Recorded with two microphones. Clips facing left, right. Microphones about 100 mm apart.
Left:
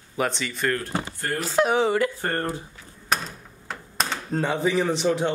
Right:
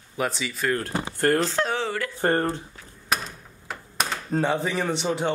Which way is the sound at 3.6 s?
5° right (ahead or behind).